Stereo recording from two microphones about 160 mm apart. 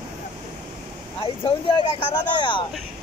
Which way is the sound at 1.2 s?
35° left (ahead or behind).